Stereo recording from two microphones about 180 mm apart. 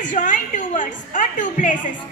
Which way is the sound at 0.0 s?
45° left (ahead or behind).